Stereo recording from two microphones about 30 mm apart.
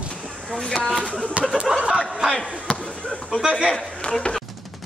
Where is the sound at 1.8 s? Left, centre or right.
Right.